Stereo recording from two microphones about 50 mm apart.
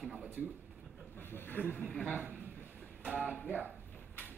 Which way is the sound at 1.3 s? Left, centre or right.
Left.